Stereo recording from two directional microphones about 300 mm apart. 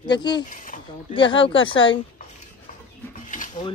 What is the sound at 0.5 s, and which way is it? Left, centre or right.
Speech, left.